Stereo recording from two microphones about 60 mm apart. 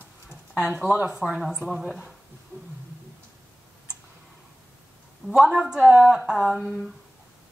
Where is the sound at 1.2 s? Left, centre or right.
Centre.